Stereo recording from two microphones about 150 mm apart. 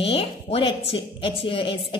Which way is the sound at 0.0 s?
40° left (ahead or behind).